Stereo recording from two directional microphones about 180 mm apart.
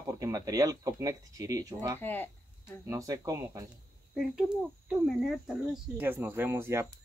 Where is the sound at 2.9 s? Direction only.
20° right (ahead or behind).